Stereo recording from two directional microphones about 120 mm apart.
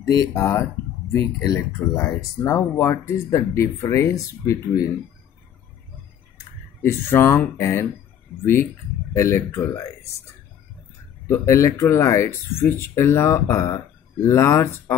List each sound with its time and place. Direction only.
0.0 s speech: 30° left (ahead or behind)
6.8 s speech: 20° left (ahead or behind)
9.1 s speech: 25° left (ahead or behind)
11.2 s speech: 25° left (ahead or behind)